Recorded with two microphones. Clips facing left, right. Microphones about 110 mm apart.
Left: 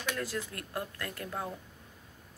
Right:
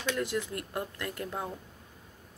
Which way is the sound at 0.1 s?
20° right (ahead or behind).